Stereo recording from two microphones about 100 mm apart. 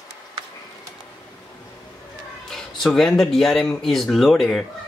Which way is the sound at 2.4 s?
5° left (ahead or behind).